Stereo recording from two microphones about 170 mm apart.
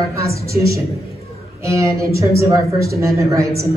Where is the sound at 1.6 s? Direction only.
15° right (ahead or behind).